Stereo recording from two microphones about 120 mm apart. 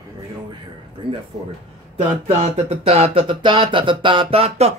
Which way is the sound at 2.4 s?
60° right (ahead or behind).